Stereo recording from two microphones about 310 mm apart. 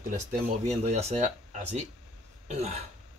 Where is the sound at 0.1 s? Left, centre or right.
Right.